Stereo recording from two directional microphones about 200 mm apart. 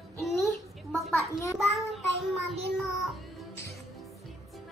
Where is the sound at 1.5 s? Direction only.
Centre (ahead or behind).